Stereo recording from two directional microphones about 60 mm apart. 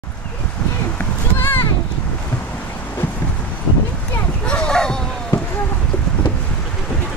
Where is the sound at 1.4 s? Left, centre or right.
Left.